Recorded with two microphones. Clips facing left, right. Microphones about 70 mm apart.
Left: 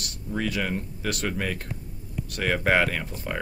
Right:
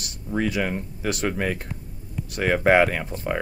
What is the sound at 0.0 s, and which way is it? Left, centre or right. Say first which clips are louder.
Speech: right 4 dB; centre.